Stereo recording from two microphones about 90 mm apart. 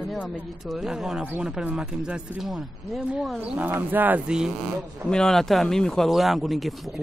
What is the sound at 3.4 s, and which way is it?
Speech, 15° right (ahead or behind).